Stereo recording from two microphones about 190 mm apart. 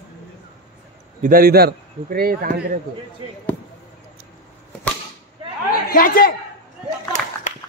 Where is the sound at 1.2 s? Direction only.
50° right (ahead or behind).